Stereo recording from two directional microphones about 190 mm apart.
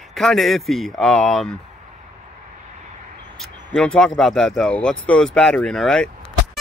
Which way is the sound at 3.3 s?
5° left (ahead or behind).